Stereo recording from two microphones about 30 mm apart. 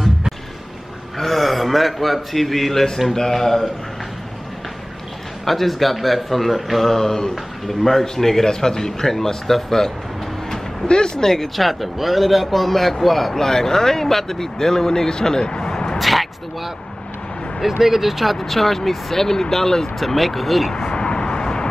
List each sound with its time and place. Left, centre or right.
1.1 s a sound: centre
3.2 s speech: centre
5.4 s a man's voice: centre
6.9 s speech: centre
10.9 s speech: left
11.2 s a man's voice: centre
16.0 s a sound: centre
17.6 s speech: centre
18.4 s speech: centre
20.0 s a man's voice: centre
20.8 s vehicle: left